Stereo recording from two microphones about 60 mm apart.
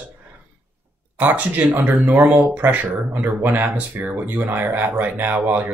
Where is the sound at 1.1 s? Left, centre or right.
Right.